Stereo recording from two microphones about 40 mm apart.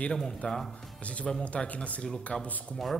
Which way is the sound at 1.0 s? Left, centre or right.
Left.